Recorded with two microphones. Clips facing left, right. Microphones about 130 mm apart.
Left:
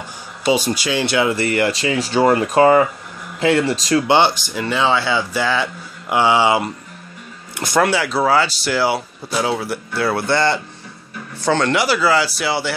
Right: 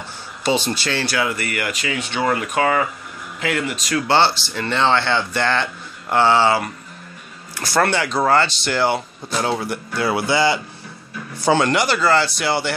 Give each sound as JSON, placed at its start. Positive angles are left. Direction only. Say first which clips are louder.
{"t": 0.5, "sound": "speech", "louder": "left 3 dB", "side_deg": 10}
{"t": 1.0, "sound": "speech", "louder": "left 8 dB", "side_deg": 25}
{"t": 4.1, "sound": "speech", "louder": "right 1 dB", "side_deg": 15}
{"t": 7.8, "sound": "speech", "louder": "left 1 dB", "side_deg": 5}
{"t": 11.7, "sound": "speech", "louder": "left 1 dB", "side_deg": 5}